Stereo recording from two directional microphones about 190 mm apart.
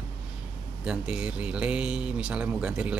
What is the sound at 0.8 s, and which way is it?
Speech, 5° right (ahead or behind).